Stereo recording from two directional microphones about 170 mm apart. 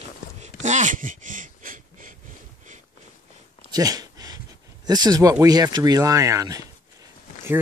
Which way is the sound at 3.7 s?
20° right (ahead or behind).